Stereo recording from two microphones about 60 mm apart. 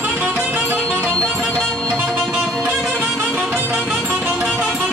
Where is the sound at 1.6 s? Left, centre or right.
Centre.